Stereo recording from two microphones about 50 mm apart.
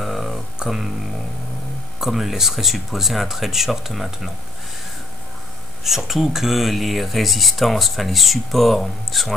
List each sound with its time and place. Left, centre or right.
0.0 s a sound: centre
0.6 s speech: centre
2.0 s speech: centre
5.9 s speech: centre